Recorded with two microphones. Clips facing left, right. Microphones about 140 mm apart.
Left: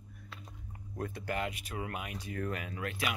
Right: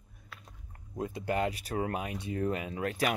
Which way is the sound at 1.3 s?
35° right (ahead or behind).